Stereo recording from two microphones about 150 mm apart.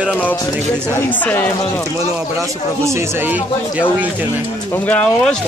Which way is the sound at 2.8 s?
10° right (ahead or behind).